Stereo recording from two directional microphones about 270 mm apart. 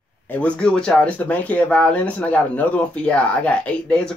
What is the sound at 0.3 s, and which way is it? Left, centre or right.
Speech, centre.